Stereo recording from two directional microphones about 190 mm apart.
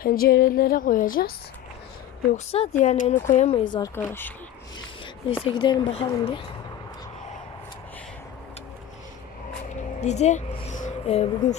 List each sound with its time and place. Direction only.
0.0 s a woman's voice: 50° left (ahead or behind)
2.3 s speech: 30° left (ahead or behind)
2.8 s speech: 40° left (ahead or behind); by 4.3 s 10° left (ahead or behind)
5.4 s speech: 25° left (ahead or behind)
9.9 s speech: 35° left (ahead or behind)